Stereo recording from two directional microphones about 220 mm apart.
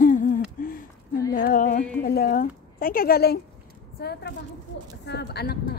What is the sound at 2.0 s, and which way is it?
A woman's voice, 40° left (ahead or behind).